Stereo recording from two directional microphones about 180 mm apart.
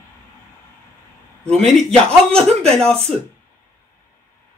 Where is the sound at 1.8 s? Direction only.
5° left (ahead or behind).